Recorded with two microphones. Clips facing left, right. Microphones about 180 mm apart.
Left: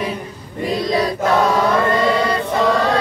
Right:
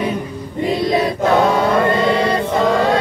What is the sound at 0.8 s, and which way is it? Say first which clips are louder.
Choir: right 1 dB; 25° right (ahead or behind).